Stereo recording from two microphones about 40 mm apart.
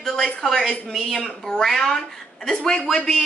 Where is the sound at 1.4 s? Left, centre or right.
Centre.